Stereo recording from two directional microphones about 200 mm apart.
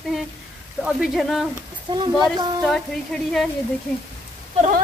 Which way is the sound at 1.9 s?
25° right (ahead or behind).